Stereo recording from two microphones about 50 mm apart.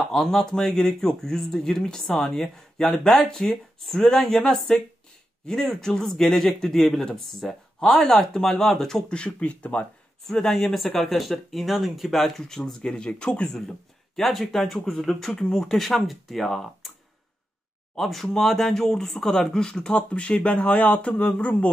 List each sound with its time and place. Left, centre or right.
0.0 s speech: centre
9.1 s speech: left
10.2 s speech: centre
13.6 s speech: centre
17.9 s speech: centre; by 21.6 s left